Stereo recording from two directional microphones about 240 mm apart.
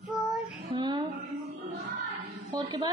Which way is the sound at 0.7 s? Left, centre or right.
Centre.